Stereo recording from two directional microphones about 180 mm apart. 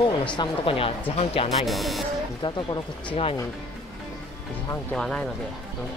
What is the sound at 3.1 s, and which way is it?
Speech, 30° left (ahead or behind).